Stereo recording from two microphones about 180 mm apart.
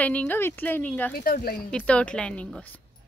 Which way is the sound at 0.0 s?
10° left (ahead or behind).